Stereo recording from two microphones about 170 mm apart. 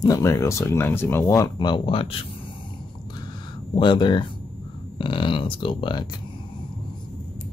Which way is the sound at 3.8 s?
30° left (ahead or behind).